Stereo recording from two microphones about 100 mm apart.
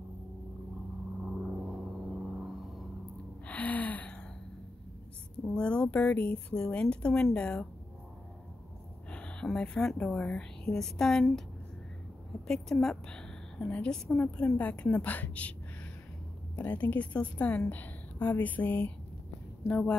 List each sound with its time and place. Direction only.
1.2 s gong: 10° right (ahead or behind)
2.3 s vehicle: 5° right (ahead or behind)
3.4 s gasp: 15° left (ahead or behind)
5.5 s a woman's voice: 10° left (ahead or behind)
9.1 s speech: 10° left (ahead or behind)
12.4 s a woman's voice: centre (ahead or behind)
16.5 s a woman's voice: 15° left (ahead or behind)